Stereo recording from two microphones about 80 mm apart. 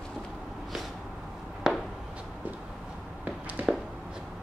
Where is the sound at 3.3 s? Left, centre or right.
Centre.